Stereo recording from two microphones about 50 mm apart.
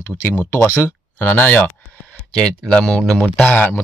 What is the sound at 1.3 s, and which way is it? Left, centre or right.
Speech, left.